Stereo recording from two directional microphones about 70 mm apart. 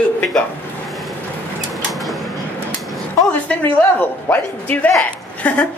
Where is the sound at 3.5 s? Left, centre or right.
Left.